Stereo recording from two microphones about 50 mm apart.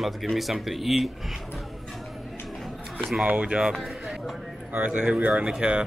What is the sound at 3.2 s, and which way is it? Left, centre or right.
Speech, right.